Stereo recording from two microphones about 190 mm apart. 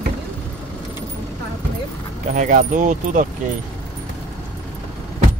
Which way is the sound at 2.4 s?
40° right (ahead or behind).